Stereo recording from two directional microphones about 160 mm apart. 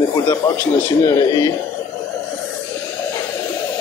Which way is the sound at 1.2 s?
25° left (ahead or behind).